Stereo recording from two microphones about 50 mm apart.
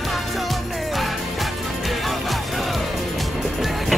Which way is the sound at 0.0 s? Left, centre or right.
Centre.